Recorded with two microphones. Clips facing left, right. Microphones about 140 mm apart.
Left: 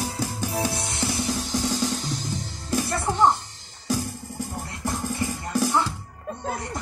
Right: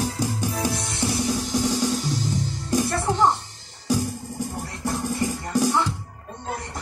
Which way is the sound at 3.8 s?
15° right (ahead or behind).